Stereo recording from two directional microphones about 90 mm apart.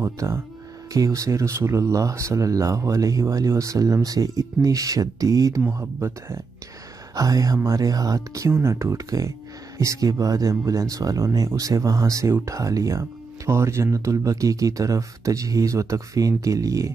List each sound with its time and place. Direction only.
0.0 s speech: 30° right (ahead or behind)
7.2 s speech: 40° right (ahead or behind)